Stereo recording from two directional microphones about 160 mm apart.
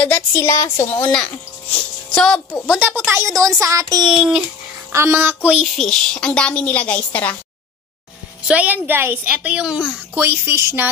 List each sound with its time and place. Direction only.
0.0 s a woman's voice: 15° left (ahead or behind)
2.1 s a woman's voice: 5° left (ahead or behind)
2.6 s a woman's voice: 5° right (ahead or behind)
3.1 s speech: 20° right (ahead or behind)
4.1 s a woman's voice: 5° right (ahead or behind)
4.9 s a woman's voice: 15° right (ahead or behind); by 7.3 s 10° left (ahead or behind)
8.5 s a woman's voice: 10° right (ahead or behind)